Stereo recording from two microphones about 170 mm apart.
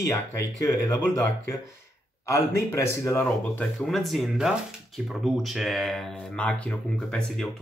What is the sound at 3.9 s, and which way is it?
Speech, centre (ahead or behind).